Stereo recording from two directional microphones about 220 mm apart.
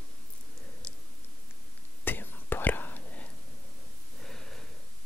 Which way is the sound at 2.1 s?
10° left (ahead or behind).